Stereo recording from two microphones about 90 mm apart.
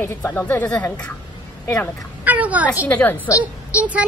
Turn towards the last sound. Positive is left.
turn(degrees=-15)  # may be behind; listen again after turning